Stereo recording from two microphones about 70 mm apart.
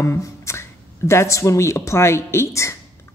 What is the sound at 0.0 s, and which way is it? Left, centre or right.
Speech, left.